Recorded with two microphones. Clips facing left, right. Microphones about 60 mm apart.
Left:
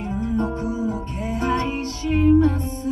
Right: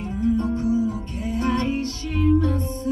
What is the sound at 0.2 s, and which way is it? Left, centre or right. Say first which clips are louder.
Music: right 3 dB; left.